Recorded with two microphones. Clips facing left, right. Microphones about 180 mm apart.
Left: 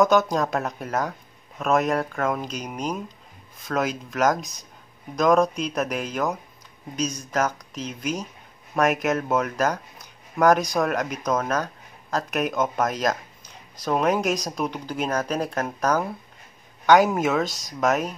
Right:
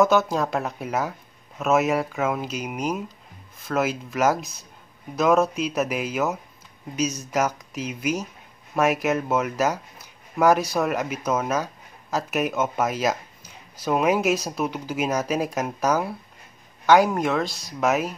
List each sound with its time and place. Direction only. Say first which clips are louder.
0.0 s speech: even; centre (ahead or behind)